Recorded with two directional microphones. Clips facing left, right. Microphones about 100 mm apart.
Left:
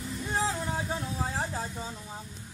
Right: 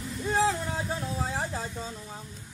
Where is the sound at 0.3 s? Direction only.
Centre (ahead or behind).